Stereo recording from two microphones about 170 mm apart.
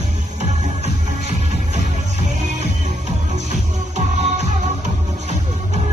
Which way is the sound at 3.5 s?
45° right (ahead or behind).